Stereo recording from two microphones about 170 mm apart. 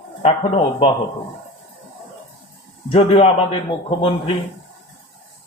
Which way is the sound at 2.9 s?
35° left (ahead or behind).